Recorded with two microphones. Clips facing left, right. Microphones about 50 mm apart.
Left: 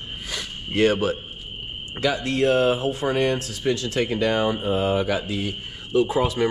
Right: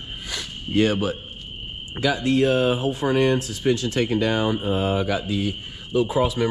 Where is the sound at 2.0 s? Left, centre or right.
Left.